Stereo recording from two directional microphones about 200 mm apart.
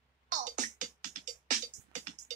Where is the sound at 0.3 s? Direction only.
40° right (ahead or behind).